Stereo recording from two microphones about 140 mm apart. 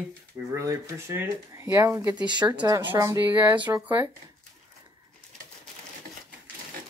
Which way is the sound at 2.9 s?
20° right (ahead or behind).